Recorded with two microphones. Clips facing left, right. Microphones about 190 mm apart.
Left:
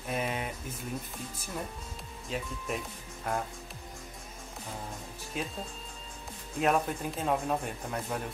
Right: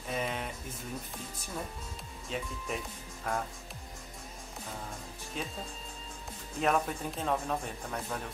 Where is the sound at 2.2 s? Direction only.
Centre (ahead or behind).